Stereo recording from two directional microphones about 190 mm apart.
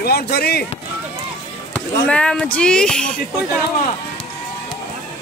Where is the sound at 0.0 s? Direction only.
55° left (ahead or behind).